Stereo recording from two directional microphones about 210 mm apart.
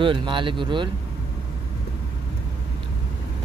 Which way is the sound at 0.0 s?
25° right (ahead or behind).